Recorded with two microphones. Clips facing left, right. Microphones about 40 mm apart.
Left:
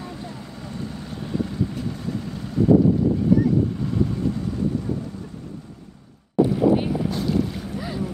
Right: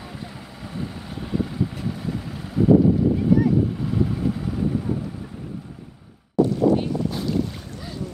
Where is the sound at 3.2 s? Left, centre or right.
Centre.